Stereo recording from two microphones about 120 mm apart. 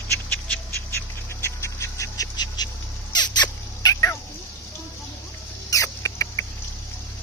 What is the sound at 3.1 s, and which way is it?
Rodents, 35° left (ahead or behind).